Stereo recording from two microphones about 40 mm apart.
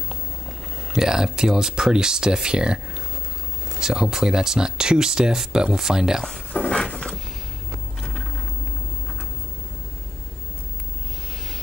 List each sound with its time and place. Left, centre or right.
0.1 s speech: centre
3.8 s speech: centre
6.5 s a sound: left